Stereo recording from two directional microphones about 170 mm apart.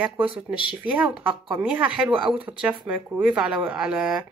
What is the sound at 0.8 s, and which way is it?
Speech, 10° right (ahead or behind).